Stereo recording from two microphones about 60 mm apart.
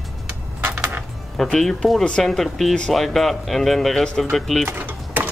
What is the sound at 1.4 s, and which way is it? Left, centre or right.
Speech, centre.